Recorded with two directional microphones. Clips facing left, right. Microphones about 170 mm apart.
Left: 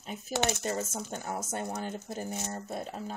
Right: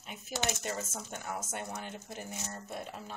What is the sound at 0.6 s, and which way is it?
Speech, 35° left (ahead or behind).